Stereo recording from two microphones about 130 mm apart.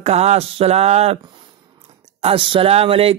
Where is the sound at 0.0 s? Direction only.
55° right (ahead or behind).